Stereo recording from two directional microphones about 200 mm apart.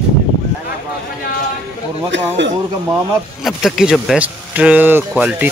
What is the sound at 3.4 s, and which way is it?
Speech, centre (ahead or behind).